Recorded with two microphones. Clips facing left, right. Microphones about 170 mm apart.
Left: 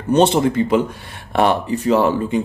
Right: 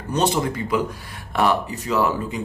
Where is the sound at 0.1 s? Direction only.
25° left (ahead or behind).